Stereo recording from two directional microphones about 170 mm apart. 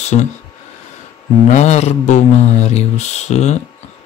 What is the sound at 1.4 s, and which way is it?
Speech, 40° left (ahead or behind).